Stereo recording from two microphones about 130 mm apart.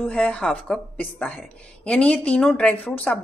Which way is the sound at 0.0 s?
10° left (ahead or behind).